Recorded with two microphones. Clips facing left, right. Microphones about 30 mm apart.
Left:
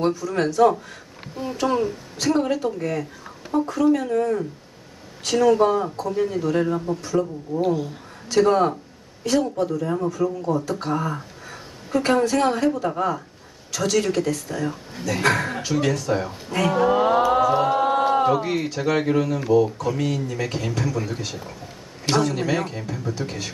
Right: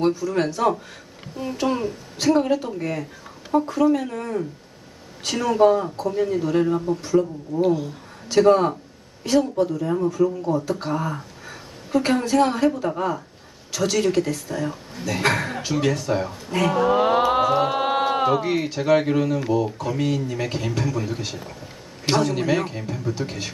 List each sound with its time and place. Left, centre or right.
0.1 s a man's voice: centre
17.0 s mantra: right
17.7 s a sound: right
18.3 s a man's voice: centre